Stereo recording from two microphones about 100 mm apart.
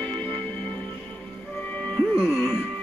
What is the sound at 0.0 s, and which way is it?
Music, 15° left (ahead or behind).